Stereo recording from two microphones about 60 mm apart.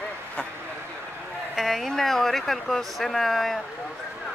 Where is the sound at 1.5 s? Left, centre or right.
Centre.